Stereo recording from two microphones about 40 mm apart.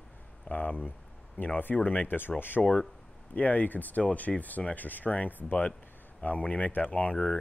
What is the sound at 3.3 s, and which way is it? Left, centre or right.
Speech, left.